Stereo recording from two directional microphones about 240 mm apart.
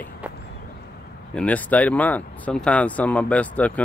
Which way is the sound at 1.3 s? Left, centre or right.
Centre.